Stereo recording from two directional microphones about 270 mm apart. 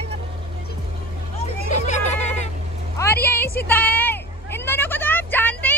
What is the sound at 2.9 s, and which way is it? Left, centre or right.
Vehicle, centre.